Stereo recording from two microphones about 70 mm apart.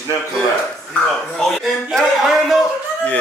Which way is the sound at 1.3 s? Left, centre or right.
Centre.